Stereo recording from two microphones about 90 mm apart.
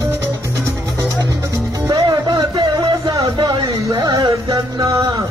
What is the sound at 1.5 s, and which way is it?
Music, 40° right (ahead or behind).